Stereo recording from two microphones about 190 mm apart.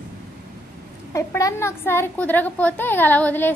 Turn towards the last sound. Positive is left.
turn(degrees=10)  # may be behind; listen again after turning